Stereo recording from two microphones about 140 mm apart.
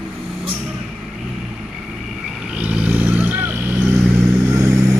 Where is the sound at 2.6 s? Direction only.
10° right (ahead or behind).